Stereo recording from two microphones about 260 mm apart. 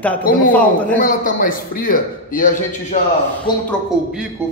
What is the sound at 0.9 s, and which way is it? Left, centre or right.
A man's voice, left.